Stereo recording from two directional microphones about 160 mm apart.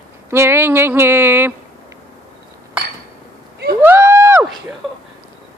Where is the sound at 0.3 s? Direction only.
15° right (ahead or behind).